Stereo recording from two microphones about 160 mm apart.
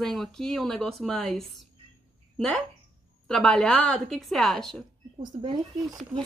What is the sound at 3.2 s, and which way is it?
A woman's voice, 5° left (ahead or behind).